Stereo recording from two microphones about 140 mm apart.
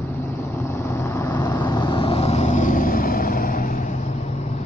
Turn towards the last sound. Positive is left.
turn(degrees=85)